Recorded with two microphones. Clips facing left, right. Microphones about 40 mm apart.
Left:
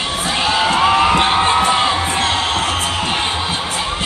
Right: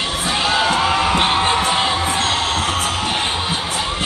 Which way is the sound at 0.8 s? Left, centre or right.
Left.